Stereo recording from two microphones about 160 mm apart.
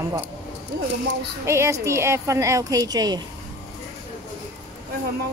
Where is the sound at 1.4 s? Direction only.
15° right (ahead or behind).